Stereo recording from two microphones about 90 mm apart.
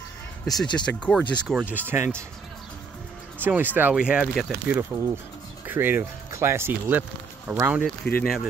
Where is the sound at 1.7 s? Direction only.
25° right (ahead or behind).